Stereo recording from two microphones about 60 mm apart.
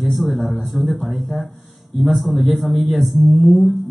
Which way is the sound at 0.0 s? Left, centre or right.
Centre.